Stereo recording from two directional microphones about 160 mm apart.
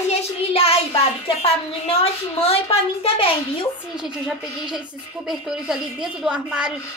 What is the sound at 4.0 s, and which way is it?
A woman's voice, 5° right (ahead or behind).